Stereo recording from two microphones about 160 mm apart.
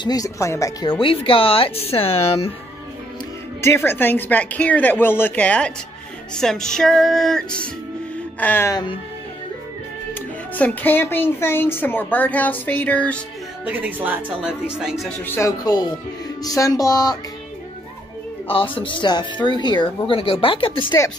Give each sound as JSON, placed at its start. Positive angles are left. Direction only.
{"t": 0.0, "sound": "speech", "side_deg": 20}
{"t": 3.6, "sound": "speech", "side_deg": 15}
{"t": 6.3, "sound": "music", "side_deg": 5}
{"t": 8.4, "sound": "speech", "side_deg": 10}
{"t": 10.1, "sound": "speech", "side_deg": 10}
{"t": 13.7, "sound": "speech", "side_deg": -10}
{"t": 15.2, "sound": "music", "side_deg": 15}
{"t": 18.5, "sound": "speech", "side_deg": 35}